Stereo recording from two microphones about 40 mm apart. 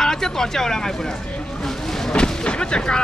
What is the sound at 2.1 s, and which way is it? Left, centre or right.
Artillery fire, left.